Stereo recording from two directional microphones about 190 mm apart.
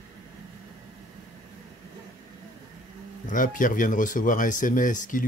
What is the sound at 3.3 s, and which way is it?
Speech, 45° left (ahead or behind).